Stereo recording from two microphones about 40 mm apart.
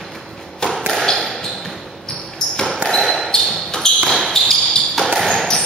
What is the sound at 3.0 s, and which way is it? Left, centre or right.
Basketball bounce, centre.